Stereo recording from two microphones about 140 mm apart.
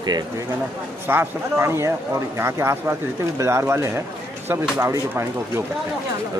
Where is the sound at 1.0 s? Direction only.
15° right (ahead or behind).